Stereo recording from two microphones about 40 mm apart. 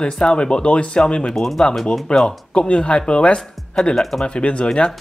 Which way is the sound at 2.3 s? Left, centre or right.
Left.